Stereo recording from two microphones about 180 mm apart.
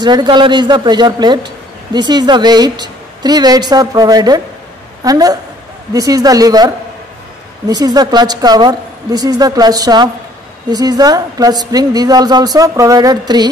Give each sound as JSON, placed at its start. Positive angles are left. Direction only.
{"t": 0.0, "sound": "a woman's voice", "side_deg": -25}